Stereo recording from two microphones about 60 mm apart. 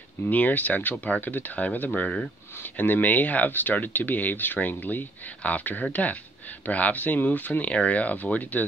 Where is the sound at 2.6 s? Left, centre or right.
Left.